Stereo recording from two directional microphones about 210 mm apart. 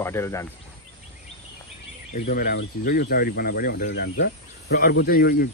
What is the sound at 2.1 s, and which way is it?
Speech, 40° left (ahead or behind).